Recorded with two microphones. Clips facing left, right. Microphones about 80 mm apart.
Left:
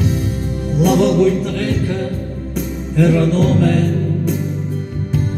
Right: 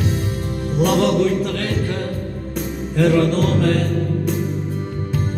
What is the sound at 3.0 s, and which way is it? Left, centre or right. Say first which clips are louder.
Music: left 1 dB; right.